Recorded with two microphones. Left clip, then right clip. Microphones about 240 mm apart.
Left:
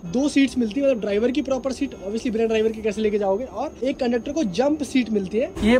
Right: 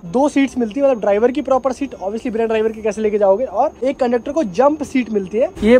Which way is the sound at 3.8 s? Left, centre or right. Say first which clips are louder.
Right 6 dB; centre.